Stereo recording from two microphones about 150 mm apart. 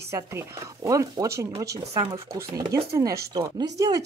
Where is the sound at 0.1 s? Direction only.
20° right (ahead or behind).